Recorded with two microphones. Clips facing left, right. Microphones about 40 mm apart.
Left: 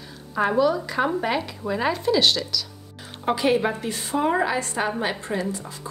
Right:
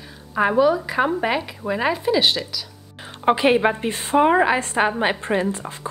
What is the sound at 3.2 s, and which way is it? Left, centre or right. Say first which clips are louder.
A woman's voice: right 5 dB; right.